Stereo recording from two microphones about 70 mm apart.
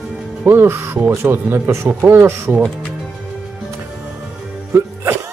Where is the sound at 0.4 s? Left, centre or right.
Right.